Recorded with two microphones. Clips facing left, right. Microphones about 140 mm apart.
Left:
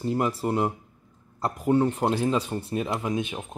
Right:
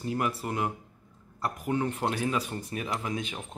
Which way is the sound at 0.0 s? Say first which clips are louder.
Left 5 dB; 30° left (ahead or behind).